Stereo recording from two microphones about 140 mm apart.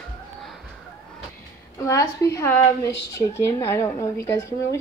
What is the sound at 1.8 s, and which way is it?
A woman's voice, 25° left (ahead or behind).